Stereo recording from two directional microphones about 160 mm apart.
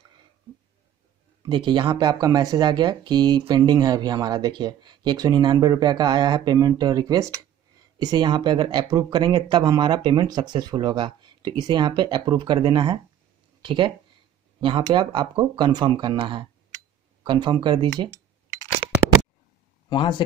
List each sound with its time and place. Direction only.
1.4 s speech: 30° right (ahead or behind)
19.9 s speech: 30° left (ahead or behind)